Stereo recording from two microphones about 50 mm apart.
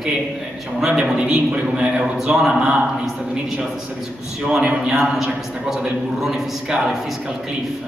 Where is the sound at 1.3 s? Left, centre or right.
Right.